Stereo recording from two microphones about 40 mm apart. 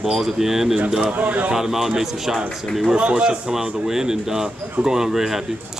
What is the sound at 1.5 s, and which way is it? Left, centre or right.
Speech, centre.